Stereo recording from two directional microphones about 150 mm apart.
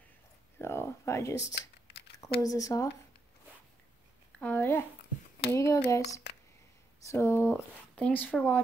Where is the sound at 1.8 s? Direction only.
90° left.